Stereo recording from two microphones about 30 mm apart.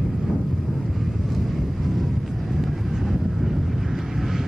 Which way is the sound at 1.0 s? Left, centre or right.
Centre.